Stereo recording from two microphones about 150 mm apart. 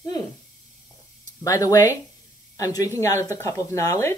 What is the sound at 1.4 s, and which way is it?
Speech, 25° left (ahead or behind).